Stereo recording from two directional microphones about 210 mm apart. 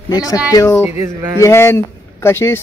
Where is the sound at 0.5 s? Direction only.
15° left (ahead or behind).